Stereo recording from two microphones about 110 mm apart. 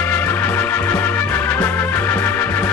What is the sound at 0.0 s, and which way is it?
Music, 15° left (ahead or behind).